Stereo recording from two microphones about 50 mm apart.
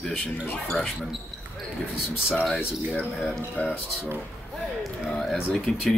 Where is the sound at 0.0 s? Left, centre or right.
Centre.